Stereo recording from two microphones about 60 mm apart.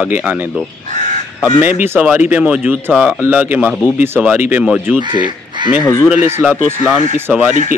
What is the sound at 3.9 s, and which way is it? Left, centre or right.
Speech, right.